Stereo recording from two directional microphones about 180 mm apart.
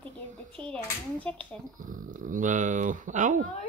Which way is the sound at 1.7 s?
50° right (ahead or behind).